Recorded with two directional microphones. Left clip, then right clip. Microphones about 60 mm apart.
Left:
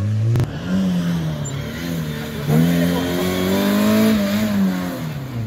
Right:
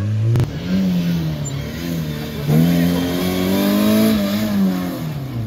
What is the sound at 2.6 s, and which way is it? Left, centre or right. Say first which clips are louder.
Vehicle: right 1 dB; centre.